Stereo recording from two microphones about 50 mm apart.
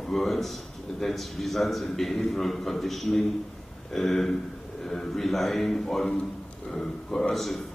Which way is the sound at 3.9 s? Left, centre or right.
Centre.